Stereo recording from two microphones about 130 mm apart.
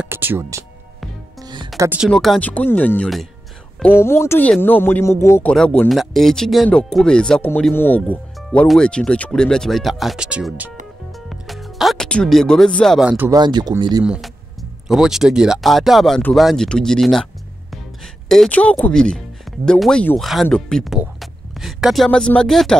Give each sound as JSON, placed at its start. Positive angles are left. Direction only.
{"t": 0.0, "sound": "speech", "side_deg": -15}
{"t": 1.4, "sound": "music", "side_deg": -35}
{"t": 2.0, "sound": "speech", "side_deg": 5}
{"t": 5.5, "sound": "speech", "side_deg": 5}
{"t": 11.1, "sound": "music", "side_deg": 0}
{"t": 13.3, "sound": "speech", "side_deg": -35}
{"t": 14.0, "sound": "speech", "side_deg": -5}